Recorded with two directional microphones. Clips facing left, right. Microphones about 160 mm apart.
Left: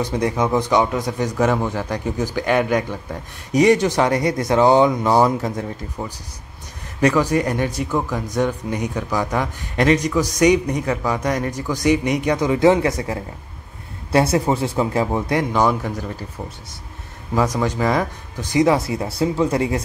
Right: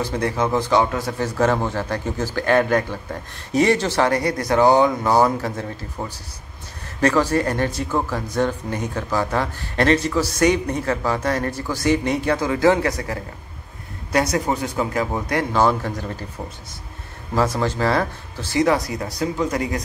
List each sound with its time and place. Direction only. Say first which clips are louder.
0.0 s speech: left 2 dB; 15° left (ahead or behind)
6.0 s speech: even; 10° right (ahead or behind)
7.0 s speech: left 1 dB; 15° left (ahead or behind)
17.4 s speech: left 1 dB; 15° left (ahead or behind); by 19.8 s 30° left (ahead or behind)